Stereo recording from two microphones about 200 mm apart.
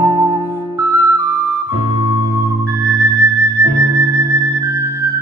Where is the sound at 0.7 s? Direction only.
15° right (ahead or behind).